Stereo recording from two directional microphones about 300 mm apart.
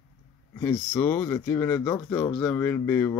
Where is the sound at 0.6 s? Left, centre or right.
Centre.